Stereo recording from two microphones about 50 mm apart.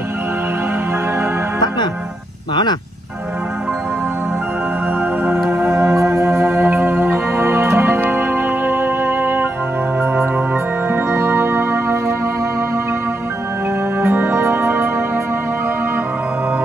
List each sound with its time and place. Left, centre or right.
5.5 s music: right
11.1 s music: right
14.0 s music: right
14.7 s music: right